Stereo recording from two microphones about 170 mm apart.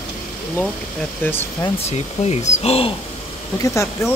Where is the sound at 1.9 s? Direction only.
40° left (ahead or behind).